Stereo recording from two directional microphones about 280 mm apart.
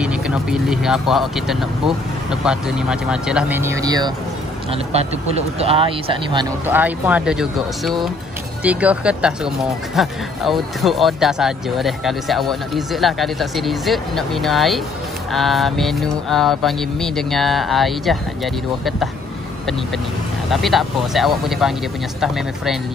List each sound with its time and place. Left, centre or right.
0.0 s speech: centre
6.6 s speech: centre
20.4 s speech: centre